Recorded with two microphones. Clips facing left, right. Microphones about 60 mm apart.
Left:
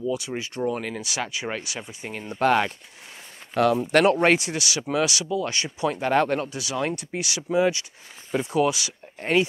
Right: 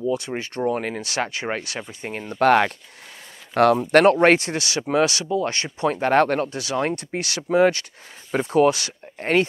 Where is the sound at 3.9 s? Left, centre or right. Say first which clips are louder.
Right 4 dB; right.